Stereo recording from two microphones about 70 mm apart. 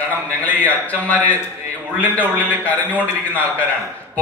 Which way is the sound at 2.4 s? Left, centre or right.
Left.